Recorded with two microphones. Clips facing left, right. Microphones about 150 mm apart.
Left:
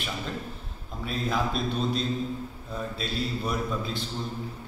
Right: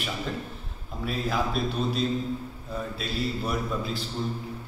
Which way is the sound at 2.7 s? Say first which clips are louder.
Right 1 dB; 5° right (ahead or behind).